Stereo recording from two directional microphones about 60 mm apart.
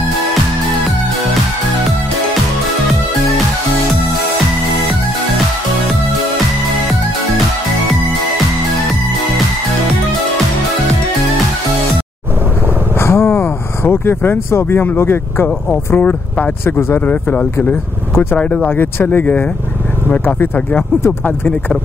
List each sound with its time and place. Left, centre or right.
13.0 s a sound: left
14.5 s speech: left
16.6 s speech: left
17.1 s speech: left
17.6 s speech: left
18.3 s speech: left